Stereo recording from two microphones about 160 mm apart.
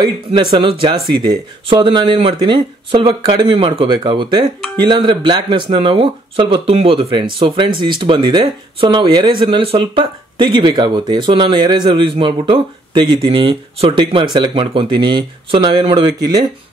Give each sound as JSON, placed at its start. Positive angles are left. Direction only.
{"t": 0.0, "sound": "speech", "side_deg": -30}